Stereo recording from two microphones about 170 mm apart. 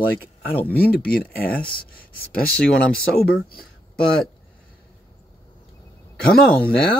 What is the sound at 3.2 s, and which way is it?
Speech, 60° left (ahead or behind).